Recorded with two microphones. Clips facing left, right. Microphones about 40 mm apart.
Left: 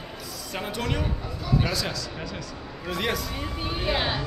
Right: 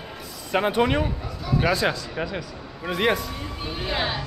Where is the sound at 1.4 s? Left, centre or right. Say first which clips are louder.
Right 3 dB; centre.